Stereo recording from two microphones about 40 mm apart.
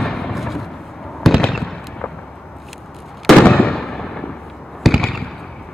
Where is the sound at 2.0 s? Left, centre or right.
Left.